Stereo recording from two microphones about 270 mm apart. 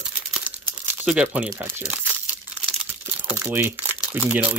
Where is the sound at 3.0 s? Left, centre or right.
Centre.